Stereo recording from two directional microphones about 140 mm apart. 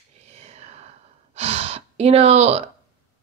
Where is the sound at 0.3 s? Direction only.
50° right (ahead or behind).